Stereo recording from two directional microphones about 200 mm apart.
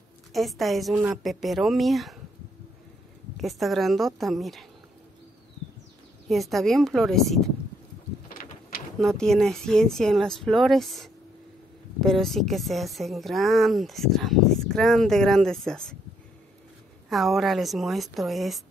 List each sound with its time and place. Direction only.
0.3 s speech: centre (ahead or behind)
3.3 s speech: centre (ahead or behind)
6.2 s speech: centre (ahead or behind)
8.3 s a sound: 45° left (ahead or behind)
8.9 s speech: centre (ahead or behind)
17.1 s speech: centre (ahead or behind)